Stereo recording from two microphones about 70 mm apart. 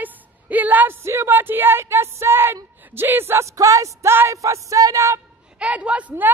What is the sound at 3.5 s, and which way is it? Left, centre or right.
Music, right.